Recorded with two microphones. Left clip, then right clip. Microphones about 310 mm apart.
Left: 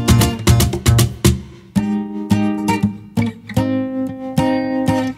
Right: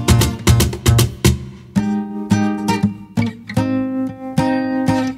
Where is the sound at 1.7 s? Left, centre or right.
Left.